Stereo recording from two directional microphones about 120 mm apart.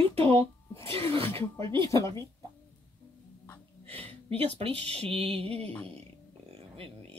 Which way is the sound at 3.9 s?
50° right (ahead or behind).